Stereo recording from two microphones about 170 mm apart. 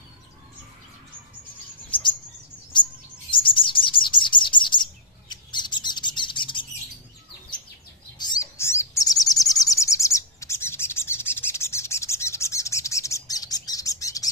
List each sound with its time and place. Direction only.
2.7 s chirp: 30° left (ahead or behind)
5.3 s bird: 25° left (ahead or behind)
8.2 s bird: 20° left (ahead or behind)